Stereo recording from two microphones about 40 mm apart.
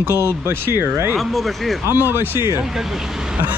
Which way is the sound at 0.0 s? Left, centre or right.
Right.